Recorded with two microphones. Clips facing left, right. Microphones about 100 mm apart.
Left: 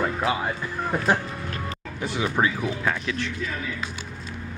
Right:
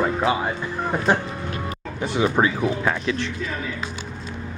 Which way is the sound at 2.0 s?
25° right (ahead or behind).